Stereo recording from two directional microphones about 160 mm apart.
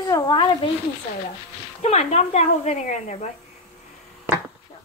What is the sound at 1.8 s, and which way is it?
Speech, 45° left (ahead or behind).